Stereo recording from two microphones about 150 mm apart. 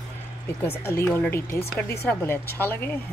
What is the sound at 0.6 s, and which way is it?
Speech, 15° left (ahead or behind).